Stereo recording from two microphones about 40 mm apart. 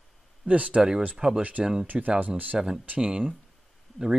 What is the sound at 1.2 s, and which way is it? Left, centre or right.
Speech, centre.